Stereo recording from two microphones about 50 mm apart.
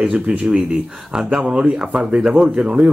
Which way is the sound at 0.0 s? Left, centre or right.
Right.